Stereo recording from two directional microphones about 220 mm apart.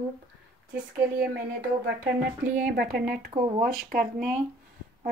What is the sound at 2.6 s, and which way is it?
Speech, 45° right (ahead or behind).